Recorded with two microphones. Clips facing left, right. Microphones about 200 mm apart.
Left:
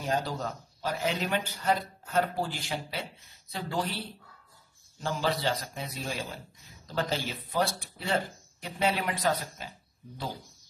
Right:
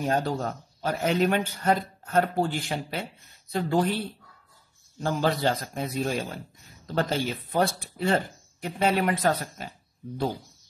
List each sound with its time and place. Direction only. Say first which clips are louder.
0.0 s speech: right 5 dB; 55° right (ahead or behind)
5.0 s speech: right 5 dB; 50° right (ahead or behind)